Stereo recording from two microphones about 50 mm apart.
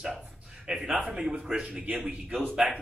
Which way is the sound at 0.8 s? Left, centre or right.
Right.